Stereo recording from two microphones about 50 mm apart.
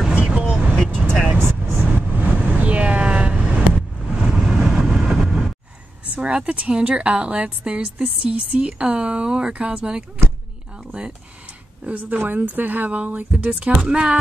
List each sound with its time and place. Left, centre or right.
0.1 s vehicle: right
1.4 s vehicle: right
1.9 s vehicle: right; by 5.4 s centre
6.2 s a woman's voice: right
11.8 s speech: right
13.7 s speech: centre